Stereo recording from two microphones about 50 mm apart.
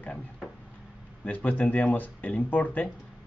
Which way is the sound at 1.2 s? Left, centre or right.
Left.